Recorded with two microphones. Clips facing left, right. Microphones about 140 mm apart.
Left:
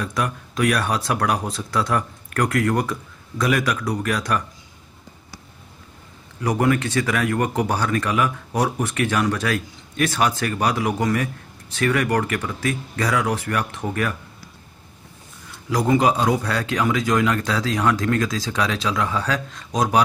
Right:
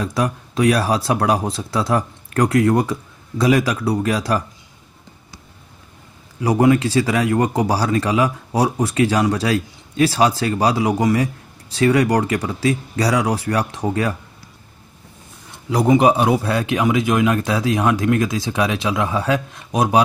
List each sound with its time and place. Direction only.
0.0 s speech: 30° right (ahead or behind)
6.5 s speech: 20° right (ahead or behind)
7.6 s speech: 35° right (ahead or behind)
8.5 s speech: 15° right (ahead or behind)
8.8 s speech: 30° right (ahead or behind)
15.9 s speech: 20° right (ahead or behind)